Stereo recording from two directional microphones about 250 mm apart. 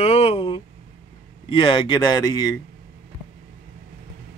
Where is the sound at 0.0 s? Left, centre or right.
Left.